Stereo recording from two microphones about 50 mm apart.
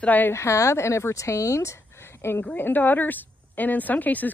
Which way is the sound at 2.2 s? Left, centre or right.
Left.